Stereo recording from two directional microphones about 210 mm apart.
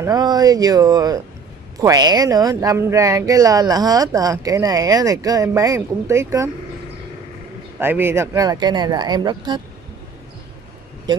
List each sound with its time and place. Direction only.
0.0 s speech: 20° right (ahead or behind)
7.8 s speech: 10° right (ahead or behind)